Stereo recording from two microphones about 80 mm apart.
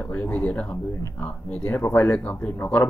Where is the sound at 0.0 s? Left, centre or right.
Centre.